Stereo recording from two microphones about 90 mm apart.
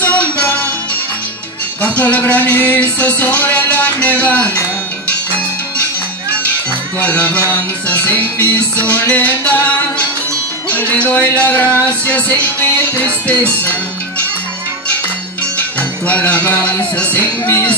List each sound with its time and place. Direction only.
0.0 s music: 15° left (ahead or behind)
1.8 s music: 20° left (ahead or behind)
7.0 s music: 15° left (ahead or behind)
10.7 s music: 15° left (ahead or behind)
16.1 s music: 15° left (ahead or behind)